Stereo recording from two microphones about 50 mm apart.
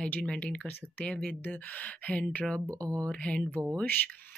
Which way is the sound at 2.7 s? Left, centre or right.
Right.